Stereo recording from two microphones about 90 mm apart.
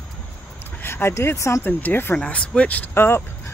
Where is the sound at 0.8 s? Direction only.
25° left (ahead or behind).